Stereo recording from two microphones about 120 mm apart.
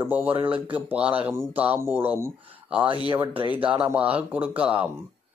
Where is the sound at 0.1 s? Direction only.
15° right (ahead or behind).